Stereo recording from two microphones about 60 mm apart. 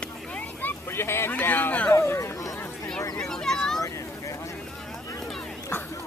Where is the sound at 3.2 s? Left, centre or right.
Centre.